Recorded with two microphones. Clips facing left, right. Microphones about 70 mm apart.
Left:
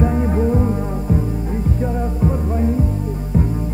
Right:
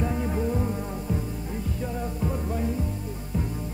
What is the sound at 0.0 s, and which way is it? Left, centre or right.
Music, left.